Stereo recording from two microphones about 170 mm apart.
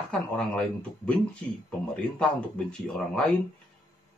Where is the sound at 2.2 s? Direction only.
5° left (ahead or behind).